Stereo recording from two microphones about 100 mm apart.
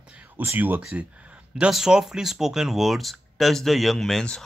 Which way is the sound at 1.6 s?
5° right (ahead or behind).